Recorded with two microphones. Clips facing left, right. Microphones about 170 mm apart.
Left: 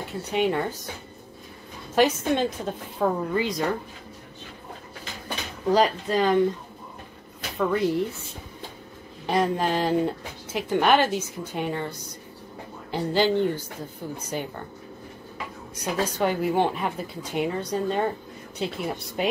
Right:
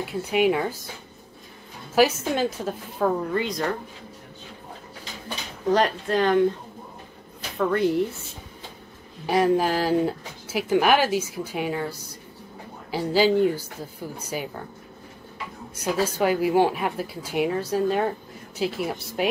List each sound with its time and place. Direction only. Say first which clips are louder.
0.3 s speech: right 3 dB; 5° right (ahead or behind)
2.0 s speech: right 1 dB; 5° right (ahead or behind)
5.7 s speech: even; centre (ahead or behind)
7.5 s speech: right 1 dB; centre (ahead or behind)
9.2 s speech: right 3 dB; 5° right (ahead or behind)
15.7 s speech: right 3 dB; 5° right (ahead or behind)